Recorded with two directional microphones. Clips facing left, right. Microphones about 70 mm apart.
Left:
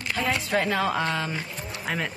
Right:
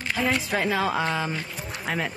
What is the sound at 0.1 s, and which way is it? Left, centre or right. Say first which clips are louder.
Speech: even; centre.